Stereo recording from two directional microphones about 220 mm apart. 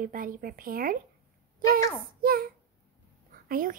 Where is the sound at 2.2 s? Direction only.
40° right (ahead or behind).